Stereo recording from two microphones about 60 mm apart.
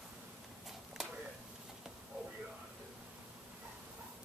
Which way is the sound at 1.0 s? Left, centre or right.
Centre.